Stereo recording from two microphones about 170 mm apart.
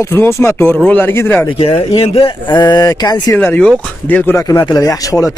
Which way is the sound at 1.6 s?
35° left (ahead or behind).